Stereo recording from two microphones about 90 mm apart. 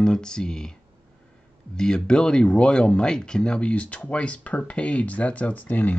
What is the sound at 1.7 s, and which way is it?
Speech, 10° left (ahead or behind).